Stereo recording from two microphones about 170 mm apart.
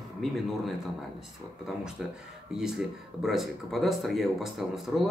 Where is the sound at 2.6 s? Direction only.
Centre (ahead or behind).